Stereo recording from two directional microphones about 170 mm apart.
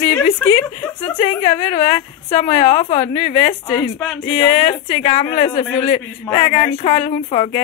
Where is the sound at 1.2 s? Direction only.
40° left (ahead or behind).